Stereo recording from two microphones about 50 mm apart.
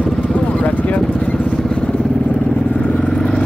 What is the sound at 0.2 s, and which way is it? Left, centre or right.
Vehicle, left.